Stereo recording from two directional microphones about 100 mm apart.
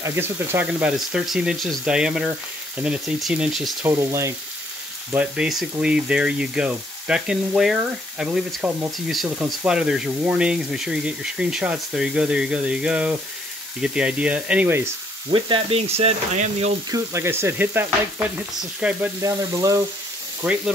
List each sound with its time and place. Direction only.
0.0 s frying: 25° right (ahead or behind)
0.9 s speech: 5° right (ahead or behind)
3.9 s frying: 30° right (ahead or behind)
5.1 s speech: 15° right (ahead or behind)
15.3 s speech: 60° right (ahead or behind); by 16.2 s 90° right
16.9 s frying: 25° right (ahead or behind)
18.6 s speech: 15° right (ahead or behind)
19.2 s frying: 35° right (ahead or behind)
20.4 s speech: 15° right (ahead or behind)